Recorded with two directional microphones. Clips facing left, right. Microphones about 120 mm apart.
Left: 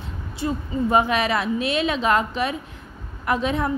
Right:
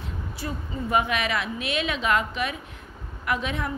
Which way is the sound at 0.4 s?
30° left (ahead or behind).